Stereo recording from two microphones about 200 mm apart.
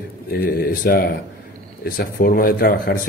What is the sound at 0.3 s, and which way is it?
Speech, 50° left (ahead or behind).